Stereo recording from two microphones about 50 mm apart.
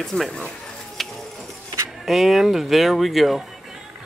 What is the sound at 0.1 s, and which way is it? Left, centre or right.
Speech, left.